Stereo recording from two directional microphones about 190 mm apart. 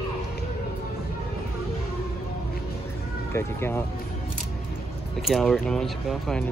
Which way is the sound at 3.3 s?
10° left (ahead or behind).